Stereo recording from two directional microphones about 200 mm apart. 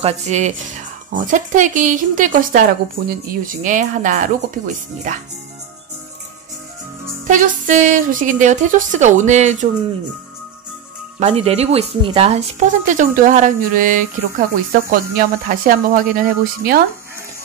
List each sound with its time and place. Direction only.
0.0 s speech: 35° right (ahead or behind)
7.2 s speech: 40° right (ahead or behind)
11.1 s speech: 30° right (ahead or behind)